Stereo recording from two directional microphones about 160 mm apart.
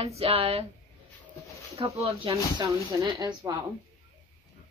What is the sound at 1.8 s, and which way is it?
Speech, 35° right (ahead or behind).